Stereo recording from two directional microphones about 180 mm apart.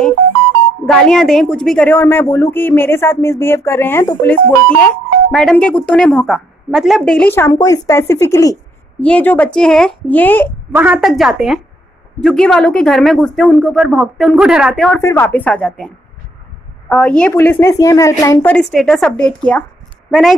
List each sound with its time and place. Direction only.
1.0 s speech: centre (ahead or behind)
10.7 s speech: 10° right (ahead or behind)
15.0 s speech: 15° left (ahead or behind)
16.9 s speech: 5° left (ahead or behind)